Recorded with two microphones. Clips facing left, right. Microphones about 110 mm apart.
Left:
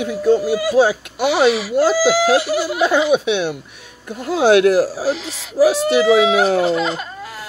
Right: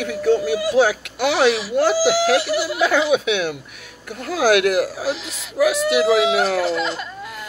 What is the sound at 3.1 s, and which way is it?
Speech, 25° left (ahead or behind).